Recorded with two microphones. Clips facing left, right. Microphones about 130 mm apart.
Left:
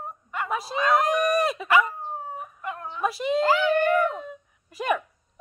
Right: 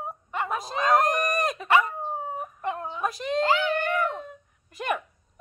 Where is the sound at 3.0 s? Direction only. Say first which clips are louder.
Left 4 dB; 5° left (ahead or behind).